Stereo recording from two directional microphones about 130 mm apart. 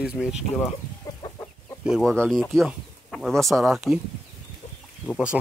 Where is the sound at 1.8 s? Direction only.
5° right (ahead or behind).